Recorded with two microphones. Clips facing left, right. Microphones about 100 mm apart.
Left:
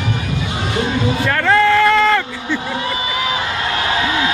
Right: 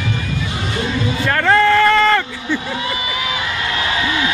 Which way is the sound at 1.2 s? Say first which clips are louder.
Right 1 dB; centre (ahead or behind).